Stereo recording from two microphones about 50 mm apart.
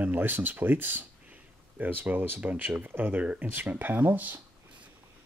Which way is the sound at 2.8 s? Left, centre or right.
Right.